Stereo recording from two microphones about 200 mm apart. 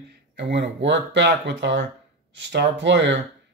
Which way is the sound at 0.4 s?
60° right (ahead or behind).